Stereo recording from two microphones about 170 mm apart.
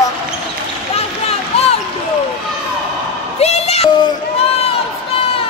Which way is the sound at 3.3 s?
35° left (ahead or behind).